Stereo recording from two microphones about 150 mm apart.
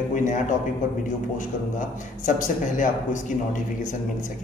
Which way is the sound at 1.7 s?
60° left (ahead or behind).